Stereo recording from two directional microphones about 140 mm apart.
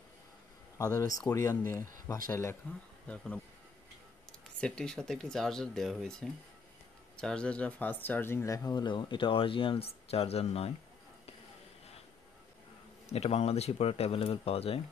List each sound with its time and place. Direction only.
0.7 s speech: 25° left (ahead or behind)
4.6 s speech: 5° left (ahead or behind)
8.6 s speech: 30° left (ahead or behind); by 10.7 s 45° left (ahead or behind)
13.1 s speech: 50° left (ahead or behind)